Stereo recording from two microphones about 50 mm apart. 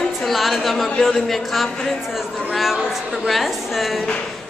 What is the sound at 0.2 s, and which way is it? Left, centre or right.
A woman's voice, centre.